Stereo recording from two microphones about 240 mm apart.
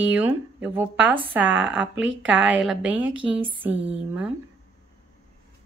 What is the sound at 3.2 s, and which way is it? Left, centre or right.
Speech, right.